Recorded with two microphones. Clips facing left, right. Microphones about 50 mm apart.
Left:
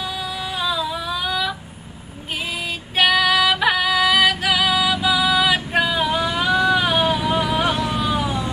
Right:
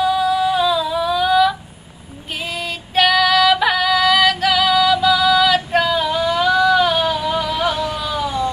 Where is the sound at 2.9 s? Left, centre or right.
Centre.